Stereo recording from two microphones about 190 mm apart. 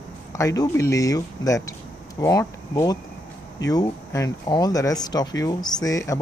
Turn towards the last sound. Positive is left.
turn(degrees=20)  # may be behind; listen again after turning